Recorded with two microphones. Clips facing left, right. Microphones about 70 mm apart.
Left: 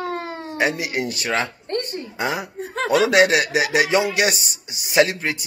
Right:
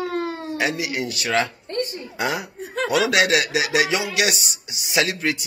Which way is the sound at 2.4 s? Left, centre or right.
Left.